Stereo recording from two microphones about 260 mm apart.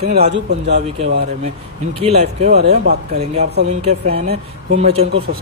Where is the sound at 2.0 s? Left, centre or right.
Right.